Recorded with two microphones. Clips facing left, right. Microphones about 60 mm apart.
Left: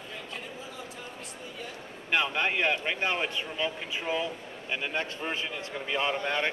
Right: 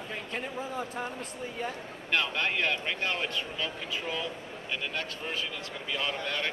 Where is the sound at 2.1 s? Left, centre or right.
Centre.